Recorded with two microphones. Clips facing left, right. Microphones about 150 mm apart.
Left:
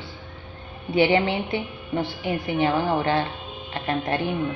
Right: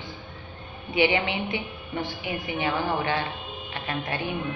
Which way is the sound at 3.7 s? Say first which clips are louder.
Left 6 dB; 40° left (ahead or behind).